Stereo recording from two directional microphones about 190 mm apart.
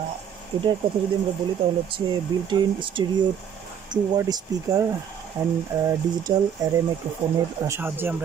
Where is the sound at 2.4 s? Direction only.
25° right (ahead or behind).